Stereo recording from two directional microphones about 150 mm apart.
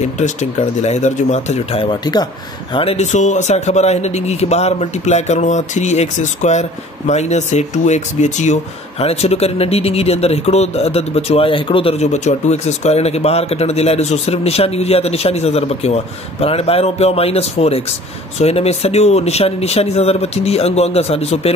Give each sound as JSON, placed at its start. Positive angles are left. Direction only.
{"t": 0.0, "sound": "speech", "side_deg": 50}
{"t": 2.7, "sound": "speech", "side_deg": 40}